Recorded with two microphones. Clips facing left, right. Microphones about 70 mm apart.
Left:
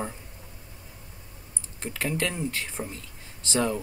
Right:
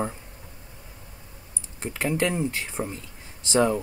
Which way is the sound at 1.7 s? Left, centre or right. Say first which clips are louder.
Right 4 dB; centre.